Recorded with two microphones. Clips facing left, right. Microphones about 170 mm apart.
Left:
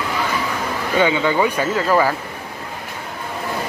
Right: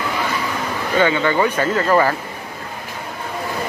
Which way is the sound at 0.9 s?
10° left (ahead or behind).